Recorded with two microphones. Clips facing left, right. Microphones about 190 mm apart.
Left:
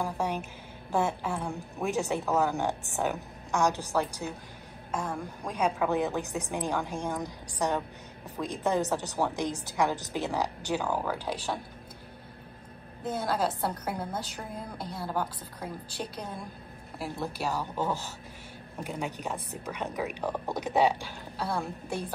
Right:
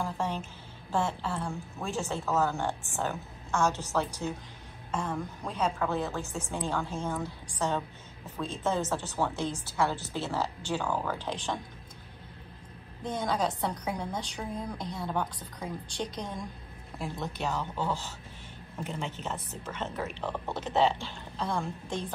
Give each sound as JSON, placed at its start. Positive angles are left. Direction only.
{"t": 0.0, "sound": "a sound", "side_deg": 10}
{"t": 0.9, "sound": "a woman's voice", "side_deg": 10}
{"t": 13.0, "sound": "a woman's voice", "side_deg": 5}